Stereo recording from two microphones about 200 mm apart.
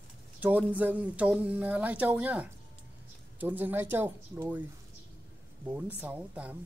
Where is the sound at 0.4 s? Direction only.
10° right (ahead or behind).